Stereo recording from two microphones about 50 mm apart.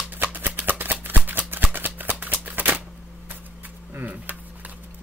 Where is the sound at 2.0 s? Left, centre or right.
Right.